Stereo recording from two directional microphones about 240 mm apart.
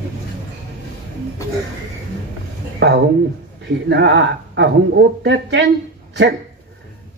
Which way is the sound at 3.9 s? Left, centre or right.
Right.